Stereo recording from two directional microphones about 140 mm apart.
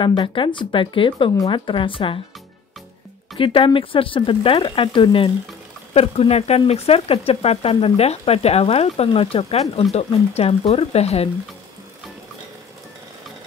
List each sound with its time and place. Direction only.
0.0 s speech: 35° left (ahead or behind)
3.3 s speech: 40° left (ahead or behind)